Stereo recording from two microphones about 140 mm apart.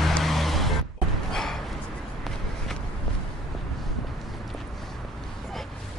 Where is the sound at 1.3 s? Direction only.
5° left (ahead or behind).